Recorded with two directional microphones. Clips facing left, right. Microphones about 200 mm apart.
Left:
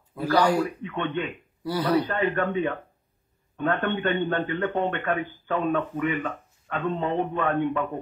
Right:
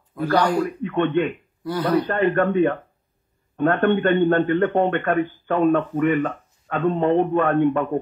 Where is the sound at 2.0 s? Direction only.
55° right (ahead or behind).